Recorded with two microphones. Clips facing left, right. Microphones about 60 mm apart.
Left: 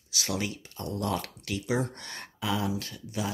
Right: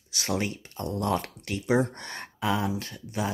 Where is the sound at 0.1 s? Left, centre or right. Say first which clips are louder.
Right 3 dB; right.